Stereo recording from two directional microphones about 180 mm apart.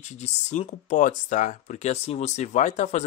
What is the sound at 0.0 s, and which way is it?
Speech, 40° left (ahead or behind).